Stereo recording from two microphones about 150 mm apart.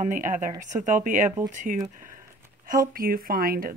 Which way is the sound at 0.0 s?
55° right (ahead or behind).